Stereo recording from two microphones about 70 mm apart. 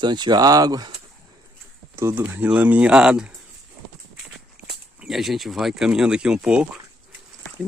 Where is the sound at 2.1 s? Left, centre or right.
Right.